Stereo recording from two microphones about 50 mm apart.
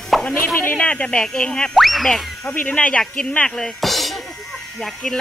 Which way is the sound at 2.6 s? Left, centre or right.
Left.